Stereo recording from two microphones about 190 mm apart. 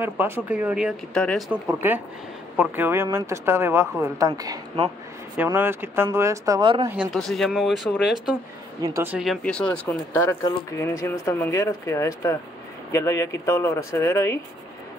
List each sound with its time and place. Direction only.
0.0 s speech: 10° right (ahead or behind); by 1.4 s 5° left (ahead or behind)
1.5 s a woman's voice: 10° right (ahead or behind)
6.9 s speech: 5° right (ahead or behind)
8.8 s speech: 15° right (ahead or behind); by 14.4 s 15° left (ahead or behind)